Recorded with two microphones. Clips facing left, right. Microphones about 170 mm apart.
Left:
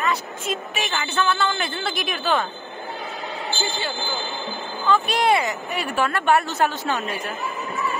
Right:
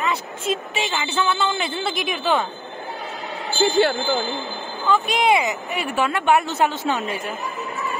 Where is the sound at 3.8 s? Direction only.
70° right (ahead or behind).